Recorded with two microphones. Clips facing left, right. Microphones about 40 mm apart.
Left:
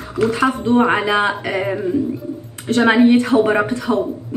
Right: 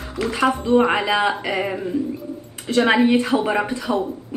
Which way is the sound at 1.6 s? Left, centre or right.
Centre.